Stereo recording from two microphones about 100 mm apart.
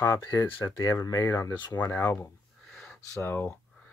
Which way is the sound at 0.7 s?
35° left (ahead or behind).